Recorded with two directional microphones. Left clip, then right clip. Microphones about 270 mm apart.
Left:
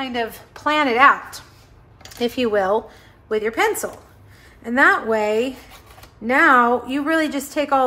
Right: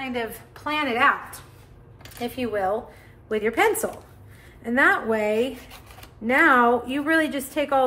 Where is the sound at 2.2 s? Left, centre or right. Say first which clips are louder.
Left 6 dB; left.